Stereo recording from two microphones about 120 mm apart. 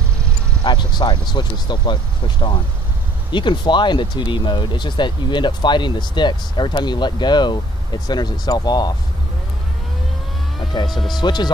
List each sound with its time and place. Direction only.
0.7 s speech: 40° left (ahead or behind)
10.9 s speech: centre (ahead or behind)
11.1 s speech: 35° left (ahead or behind)